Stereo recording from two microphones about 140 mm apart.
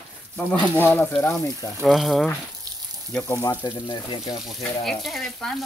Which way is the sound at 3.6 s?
35° left (ahead or behind).